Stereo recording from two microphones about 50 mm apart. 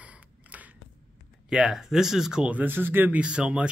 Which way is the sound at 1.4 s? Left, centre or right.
Centre.